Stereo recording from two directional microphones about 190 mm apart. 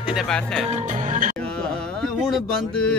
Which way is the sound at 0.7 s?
45° right (ahead or behind).